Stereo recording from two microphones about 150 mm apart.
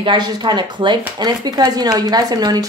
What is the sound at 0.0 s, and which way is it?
Speech, 30° right (ahead or behind).